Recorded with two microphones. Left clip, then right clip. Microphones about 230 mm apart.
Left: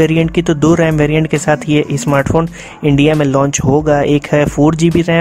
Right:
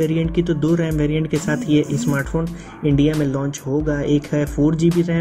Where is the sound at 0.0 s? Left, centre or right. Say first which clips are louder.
Left 8 dB; left.